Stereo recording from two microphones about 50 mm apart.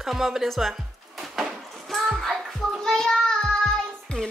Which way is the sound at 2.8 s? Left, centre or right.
Centre.